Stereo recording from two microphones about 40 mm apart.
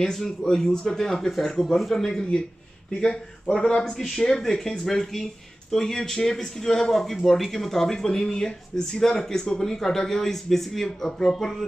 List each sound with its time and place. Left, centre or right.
0.0 s speech: centre
3.4 s speech: centre